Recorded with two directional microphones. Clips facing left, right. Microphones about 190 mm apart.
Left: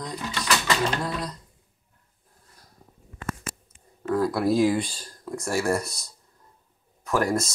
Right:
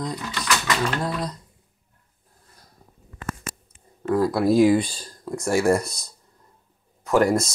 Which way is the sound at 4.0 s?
10° right (ahead or behind).